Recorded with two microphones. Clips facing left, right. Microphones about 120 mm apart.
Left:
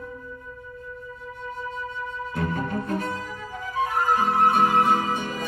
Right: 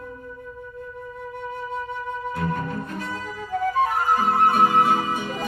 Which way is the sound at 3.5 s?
55° right (ahead or behind).